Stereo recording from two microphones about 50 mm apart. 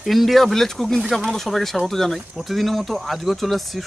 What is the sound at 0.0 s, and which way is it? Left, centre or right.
Speech, centre.